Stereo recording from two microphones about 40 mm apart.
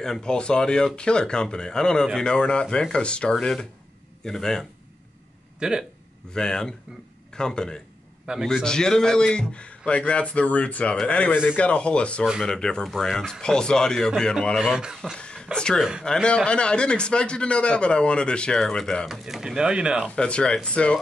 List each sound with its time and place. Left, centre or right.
0.0 s speech: centre
5.6 s speech: centre
6.3 s speech: centre
8.3 s a man's voice: right
8.6 s speech: centre
14.6 s speech: centre
15.1 s a sound: left
15.5 s speech: left
16.4 s speech: left
19.0 s speech: centre
20.2 s speech: left